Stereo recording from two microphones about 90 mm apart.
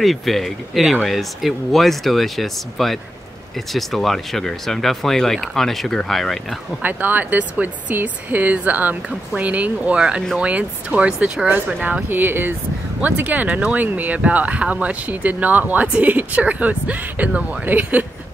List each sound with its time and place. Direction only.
0.0 s speech: centre (ahead or behind)
6.8 s speech: 20° right (ahead or behind)